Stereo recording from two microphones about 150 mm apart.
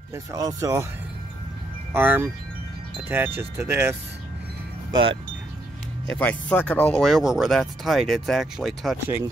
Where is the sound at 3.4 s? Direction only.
10° right (ahead or behind).